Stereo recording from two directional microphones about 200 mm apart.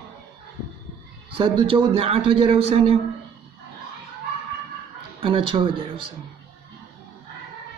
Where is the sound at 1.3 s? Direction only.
25° right (ahead or behind).